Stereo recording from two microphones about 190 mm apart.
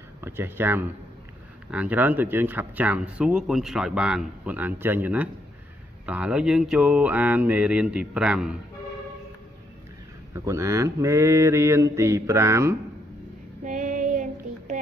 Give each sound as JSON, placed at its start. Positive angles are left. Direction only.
{"t": 0.2, "sound": "speech", "side_deg": -10}
{"t": 10.3, "sound": "speech", "side_deg": -15}
{"t": 13.7, "sound": "child singing", "side_deg": -40}